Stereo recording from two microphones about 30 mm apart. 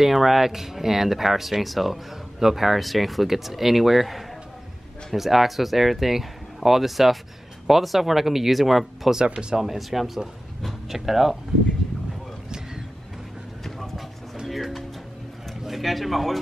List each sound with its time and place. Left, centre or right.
0.0 s speech: centre
9.2 s speech: right
9.8 s speech: centre
12.4 s vehicle: right
13.7 s vehicle: centre
14.4 s music: centre
15.6 s speech: centre